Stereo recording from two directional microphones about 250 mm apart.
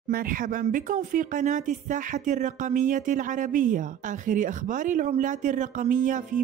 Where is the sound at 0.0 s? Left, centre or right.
Right.